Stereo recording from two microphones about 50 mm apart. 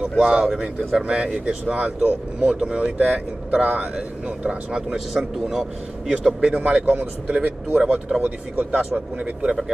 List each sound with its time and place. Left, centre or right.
0.2 s a man's voice: centre
4.9 s a man's voice: centre
6.4 s speech: right
8.2 s speech: right